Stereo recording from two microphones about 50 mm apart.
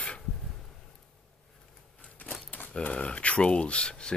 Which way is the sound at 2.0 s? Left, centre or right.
Left.